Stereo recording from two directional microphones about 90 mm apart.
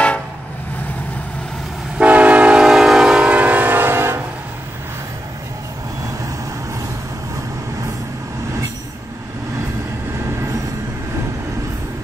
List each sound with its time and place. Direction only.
2.0 s train: 15° right (ahead or behind)